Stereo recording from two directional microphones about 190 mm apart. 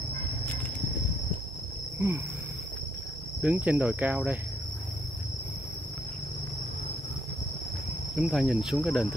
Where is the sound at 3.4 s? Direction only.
5° right (ahead or behind).